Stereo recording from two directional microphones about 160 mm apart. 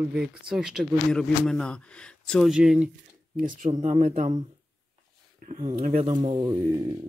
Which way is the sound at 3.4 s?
55° right (ahead or behind).